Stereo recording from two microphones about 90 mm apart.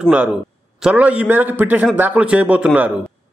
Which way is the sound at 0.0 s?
10° right (ahead or behind).